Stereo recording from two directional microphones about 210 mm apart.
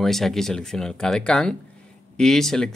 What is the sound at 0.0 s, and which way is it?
Speech, centre (ahead or behind).